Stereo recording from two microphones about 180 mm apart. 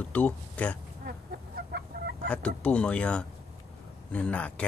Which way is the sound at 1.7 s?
65° right (ahead or behind).